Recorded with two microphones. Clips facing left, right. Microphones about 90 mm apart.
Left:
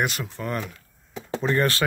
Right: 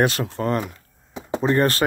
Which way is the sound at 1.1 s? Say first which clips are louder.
Right 4 dB; 20° right (ahead or behind).